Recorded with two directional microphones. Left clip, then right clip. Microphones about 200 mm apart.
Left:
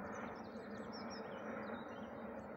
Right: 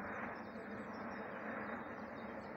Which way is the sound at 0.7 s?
35° left (ahead or behind).